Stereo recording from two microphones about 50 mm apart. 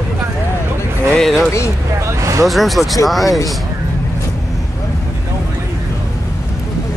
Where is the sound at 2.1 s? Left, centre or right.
Right.